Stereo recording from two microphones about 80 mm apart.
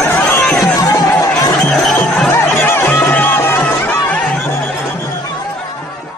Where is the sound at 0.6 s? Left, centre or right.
Left.